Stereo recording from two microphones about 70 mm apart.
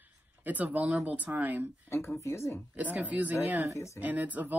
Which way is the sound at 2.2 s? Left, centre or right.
Left.